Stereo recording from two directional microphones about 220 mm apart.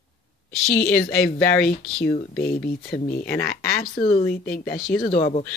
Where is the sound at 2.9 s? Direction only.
45° left (ahead or behind).